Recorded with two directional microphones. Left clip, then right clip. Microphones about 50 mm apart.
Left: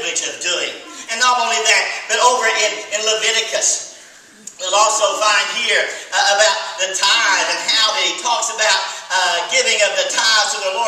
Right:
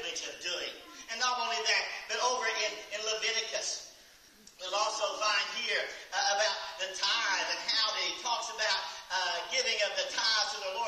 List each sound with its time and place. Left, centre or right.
0.0 s a sound: centre
1.1 s a man's voice: centre
4.6 s a man's voice: centre